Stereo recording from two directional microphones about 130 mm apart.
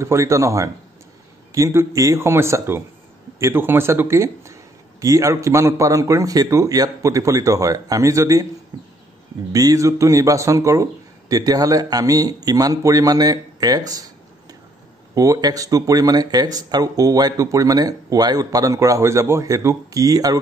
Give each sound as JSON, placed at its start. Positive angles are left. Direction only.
{"t": 0.0, "sound": "speech", "side_deg": -20}
{"t": 9.5, "sound": "speech", "side_deg": -25}